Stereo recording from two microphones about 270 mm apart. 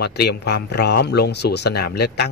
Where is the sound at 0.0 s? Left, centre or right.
Left.